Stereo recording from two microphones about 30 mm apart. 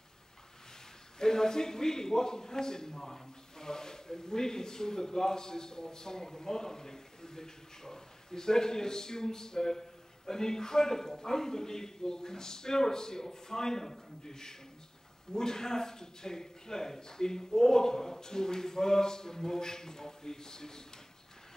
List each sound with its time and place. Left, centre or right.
1.2 s a man's voice: centre